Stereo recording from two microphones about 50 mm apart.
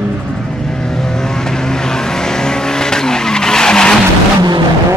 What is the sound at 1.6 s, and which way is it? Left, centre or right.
Vehicle, centre.